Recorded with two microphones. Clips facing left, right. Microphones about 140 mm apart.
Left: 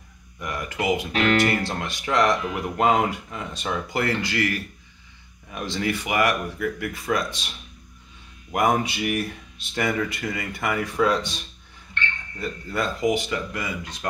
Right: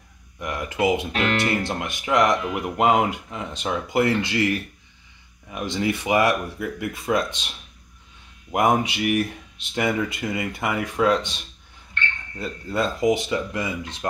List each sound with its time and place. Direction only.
0.4 s speech: 20° right (ahead or behind)
8.5 s speech: 20° right (ahead or behind)
12.4 s speech: 25° right (ahead or behind)